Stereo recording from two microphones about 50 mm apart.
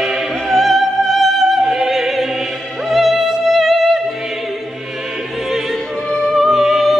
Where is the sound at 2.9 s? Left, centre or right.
Centre.